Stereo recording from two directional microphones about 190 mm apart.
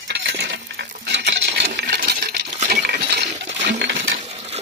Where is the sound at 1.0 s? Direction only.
65° right (ahead or behind).